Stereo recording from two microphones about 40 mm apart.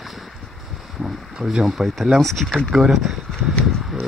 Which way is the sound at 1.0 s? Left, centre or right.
Right.